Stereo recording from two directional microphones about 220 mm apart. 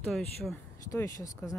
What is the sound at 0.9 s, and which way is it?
Speech, 15° left (ahead or behind).